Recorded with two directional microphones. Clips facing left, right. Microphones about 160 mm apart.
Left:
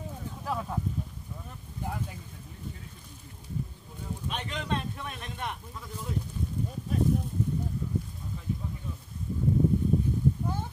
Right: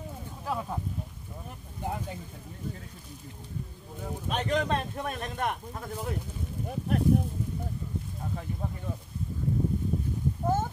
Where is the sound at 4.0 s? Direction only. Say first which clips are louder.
Right 4 dB; 50° right (ahead or behind).